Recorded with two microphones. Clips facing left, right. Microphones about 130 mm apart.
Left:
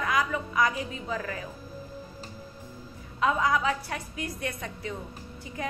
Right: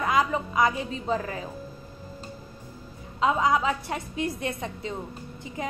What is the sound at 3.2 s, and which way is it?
A woman's voice, 20° right (ahead or behind).